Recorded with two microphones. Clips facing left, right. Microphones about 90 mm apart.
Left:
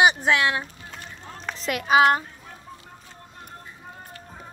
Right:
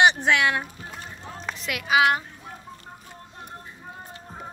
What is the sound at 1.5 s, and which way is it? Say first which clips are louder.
Speech: left 3 dB; 40° left (ahead or behind).